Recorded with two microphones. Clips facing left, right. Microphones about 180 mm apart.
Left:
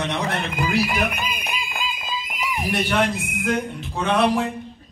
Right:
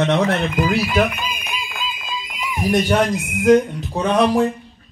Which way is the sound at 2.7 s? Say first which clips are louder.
Right 5 dB; 40° right (ahead or behind).